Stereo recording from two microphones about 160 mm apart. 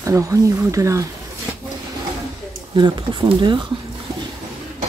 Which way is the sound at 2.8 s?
30° right (ahead or behind).